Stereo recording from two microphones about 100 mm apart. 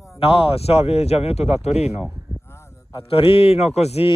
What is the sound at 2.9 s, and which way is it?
A man's voice, 65° left (ahead or behind).